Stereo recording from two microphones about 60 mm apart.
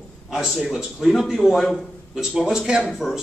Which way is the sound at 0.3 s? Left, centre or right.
Centre.